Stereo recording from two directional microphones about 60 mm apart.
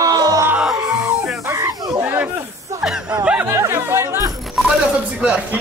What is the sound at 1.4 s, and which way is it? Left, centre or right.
Snake, right.